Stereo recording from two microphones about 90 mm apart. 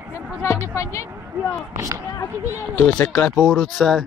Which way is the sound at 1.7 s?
40° right (ahead or behind).